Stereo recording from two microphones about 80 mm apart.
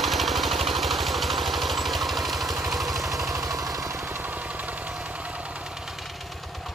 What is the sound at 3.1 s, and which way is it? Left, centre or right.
Vehicle, right.